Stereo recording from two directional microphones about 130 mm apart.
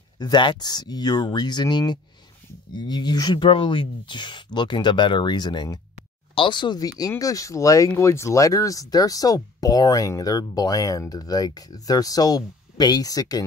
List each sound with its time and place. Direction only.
0.2 s speech: 35° left (ahead or behind)